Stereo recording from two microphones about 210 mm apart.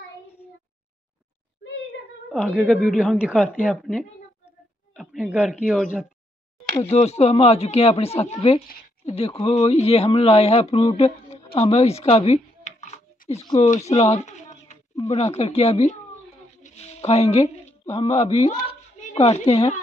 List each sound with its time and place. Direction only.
2.3 s a man's voice: centre (ahead or behind)
6.8 s speech: 30° left (ahead or behind)